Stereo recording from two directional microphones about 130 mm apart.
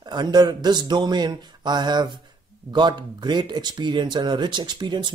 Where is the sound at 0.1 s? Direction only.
30° right (ahead or behind).